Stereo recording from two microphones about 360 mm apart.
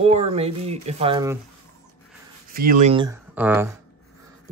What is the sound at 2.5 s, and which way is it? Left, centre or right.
Speech, right.